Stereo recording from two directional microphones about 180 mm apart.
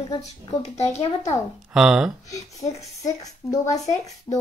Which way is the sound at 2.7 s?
20° left (ahead or behind).